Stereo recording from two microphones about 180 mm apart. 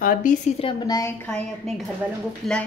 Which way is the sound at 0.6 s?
25° left (ahead or behind).